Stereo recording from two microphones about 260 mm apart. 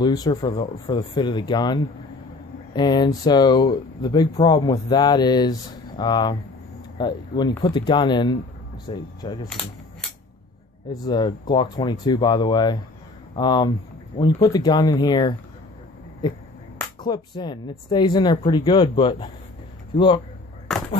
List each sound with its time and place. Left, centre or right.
0.0 s speech: centre
10.9 s speech: centre
17.0 s speech: centre